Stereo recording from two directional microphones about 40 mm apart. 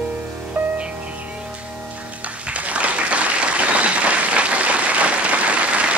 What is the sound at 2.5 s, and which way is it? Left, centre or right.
Applause, right.